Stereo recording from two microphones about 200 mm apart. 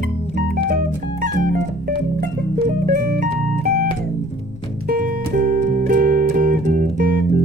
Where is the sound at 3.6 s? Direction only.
50° right (ahead or behind).